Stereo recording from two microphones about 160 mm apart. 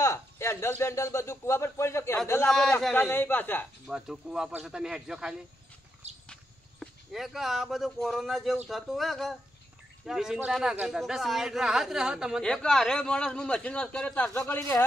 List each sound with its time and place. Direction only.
0.0 s a man's voice: 20° left (ahead or behind)
2.5 s a man's voice: 5° left (ahead or behind)
3.8 s a man's voice: 5° right (ahead or behind)
6.0 s a sound: 40° right (ahead or behind)
6.8 s a man's voice: centre (ahead or behind)